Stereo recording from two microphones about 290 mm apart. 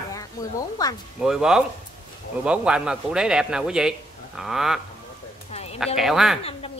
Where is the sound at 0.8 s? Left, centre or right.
Centre.